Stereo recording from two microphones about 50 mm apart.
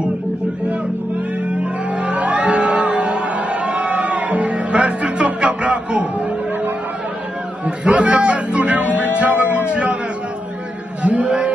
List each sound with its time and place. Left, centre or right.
1.6 s music: right
7.6 s speech: right
11.0 s chant: right